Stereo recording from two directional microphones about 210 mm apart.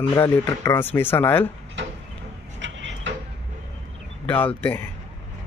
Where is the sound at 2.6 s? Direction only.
60° right (ahead or behind).